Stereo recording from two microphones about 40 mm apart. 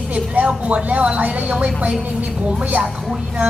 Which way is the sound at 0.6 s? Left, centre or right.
Right.